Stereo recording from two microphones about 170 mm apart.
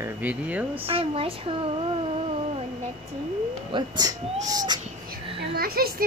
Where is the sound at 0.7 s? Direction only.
35° right (ahead or behind).